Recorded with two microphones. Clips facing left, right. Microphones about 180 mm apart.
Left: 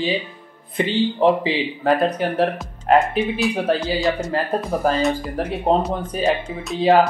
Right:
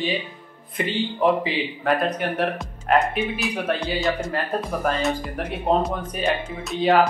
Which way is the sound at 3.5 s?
30° left (ahead or behind).